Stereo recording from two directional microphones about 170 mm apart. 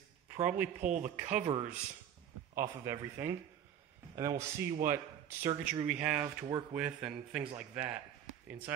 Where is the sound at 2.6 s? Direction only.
15° right (ahead or behind).